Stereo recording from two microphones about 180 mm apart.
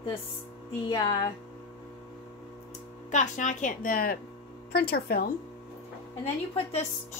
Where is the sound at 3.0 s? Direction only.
45° left (ahead or behind); by 5.3 s 60° left (ahead or behind).